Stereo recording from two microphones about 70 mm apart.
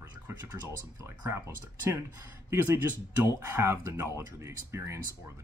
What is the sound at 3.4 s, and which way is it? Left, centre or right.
Speech, right.